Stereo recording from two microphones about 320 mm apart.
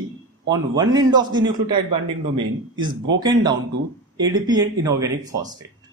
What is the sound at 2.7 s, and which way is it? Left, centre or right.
Speech, right.